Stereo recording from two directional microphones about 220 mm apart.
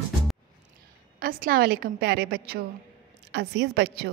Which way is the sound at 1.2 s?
40° right (ahead or behind).